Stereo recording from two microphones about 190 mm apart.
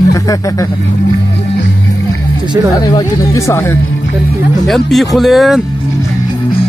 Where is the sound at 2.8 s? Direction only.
20° left (ahead or behind).